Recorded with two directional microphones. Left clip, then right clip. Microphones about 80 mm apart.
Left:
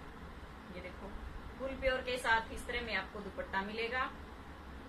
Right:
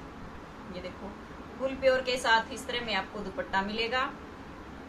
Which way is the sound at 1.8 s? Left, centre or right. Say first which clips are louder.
Right 8 dB; centre.